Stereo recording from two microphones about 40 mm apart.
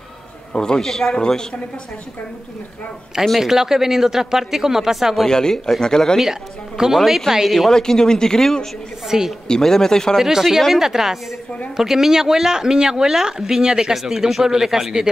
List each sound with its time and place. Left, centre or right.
0.5 s speech: centre
3.3 s speech: centre
5.3 s speech: centre
7.1 s speech: centre
7.7 s speech: centre
9.0 s speech: centre
9.6 s speech: centre
10.1 s speech: centre